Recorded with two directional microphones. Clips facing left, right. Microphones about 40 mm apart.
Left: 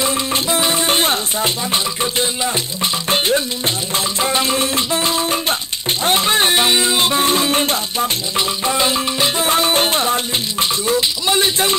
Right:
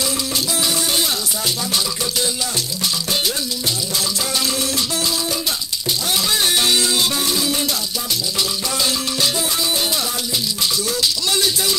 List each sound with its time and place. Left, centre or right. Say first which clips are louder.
0.0 s music: left 4 dB; left